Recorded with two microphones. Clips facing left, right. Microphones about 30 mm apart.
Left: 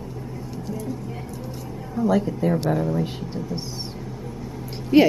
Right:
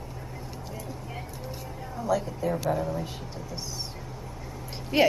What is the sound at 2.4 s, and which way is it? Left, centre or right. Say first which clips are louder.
A woman's voice: left 5 dB; left.